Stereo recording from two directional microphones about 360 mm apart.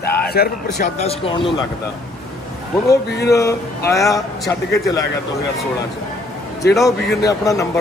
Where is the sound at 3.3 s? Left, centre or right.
Centre.